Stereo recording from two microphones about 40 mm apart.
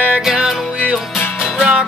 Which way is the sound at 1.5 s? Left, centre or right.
Right.